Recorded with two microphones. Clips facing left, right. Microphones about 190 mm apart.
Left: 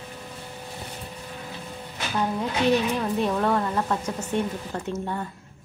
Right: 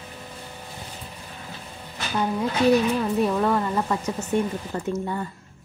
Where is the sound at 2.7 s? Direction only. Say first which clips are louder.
Right 3 dB; 5° right (ahead or behind).